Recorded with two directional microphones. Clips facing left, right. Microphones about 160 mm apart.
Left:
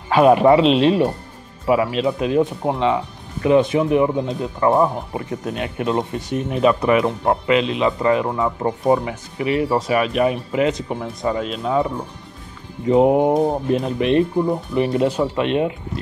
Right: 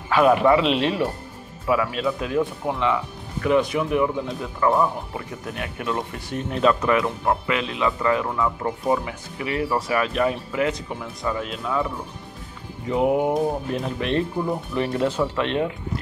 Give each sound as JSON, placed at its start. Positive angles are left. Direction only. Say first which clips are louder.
{"t": 0.1, "sound": "speech", "louder": "left 4 dB", "side_deg": 25}
{"t": 12.9, "sound": "speech", "louder": "left 6 dB", "side_deg": 30}